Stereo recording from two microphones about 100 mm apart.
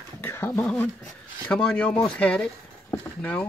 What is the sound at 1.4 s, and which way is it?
Speech, 10° left (ahead or behind).